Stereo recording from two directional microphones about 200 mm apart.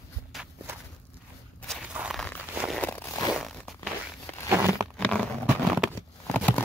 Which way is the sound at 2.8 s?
10° left (ahead or behind).